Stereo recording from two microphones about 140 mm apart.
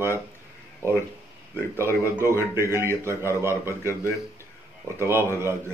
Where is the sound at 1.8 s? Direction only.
20° right (ahead or behind).